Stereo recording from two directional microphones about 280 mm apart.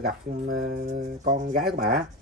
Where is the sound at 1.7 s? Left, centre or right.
Right.